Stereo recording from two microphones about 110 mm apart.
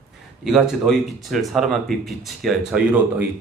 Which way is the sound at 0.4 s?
Centre (ahead or behind).